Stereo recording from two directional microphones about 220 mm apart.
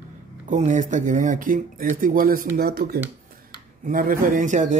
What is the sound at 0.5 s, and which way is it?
Speech, 35° right (ahead or behind).